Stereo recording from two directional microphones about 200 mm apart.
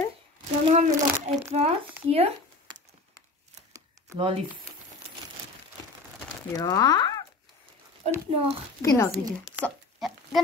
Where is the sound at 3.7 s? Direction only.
15° right (ahead or behind).